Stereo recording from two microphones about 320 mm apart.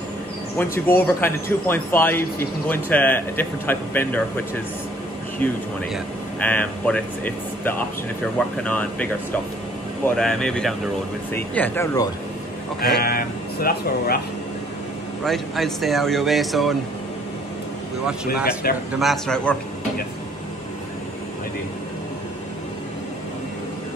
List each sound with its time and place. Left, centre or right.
0.6 s speech: centre
6.4 s speech: centre
12.8 s speech: left
15.2 s speech: centre
18.4 s speech: left
18.9 s speech: centre